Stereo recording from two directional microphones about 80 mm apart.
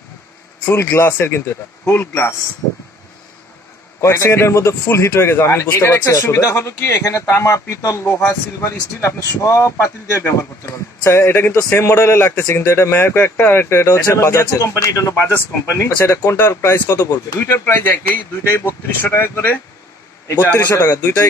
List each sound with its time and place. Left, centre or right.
0.7 s a man's voice: left
4.0 s a man's voice: left
17.0 s speech: left
17.5 s a man's voice: left
19.0 s a man's voice: left